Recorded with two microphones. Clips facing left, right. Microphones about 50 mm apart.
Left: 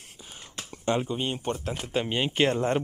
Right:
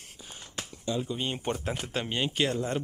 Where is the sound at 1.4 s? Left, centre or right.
Centre.